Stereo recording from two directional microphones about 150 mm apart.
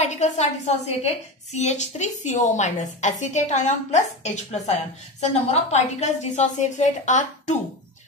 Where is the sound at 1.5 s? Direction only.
50° left (ahead or behind).